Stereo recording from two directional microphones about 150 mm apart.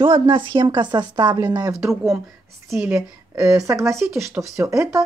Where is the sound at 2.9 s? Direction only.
20° right (ahead or behind).